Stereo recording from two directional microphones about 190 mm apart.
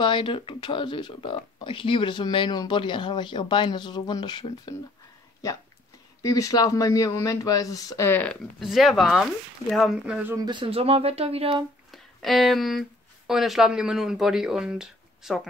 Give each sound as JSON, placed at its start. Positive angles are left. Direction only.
{"t": 0.0, "sound": "speech", "side_deg": 25}
{"t": 6.2, "sound": "speech", "side_deg": 20}
{"t": 10.3, "sound": "speech", "side_deg": -25}
{"t": 11.9, "sound": "speech", "side_deg": 0}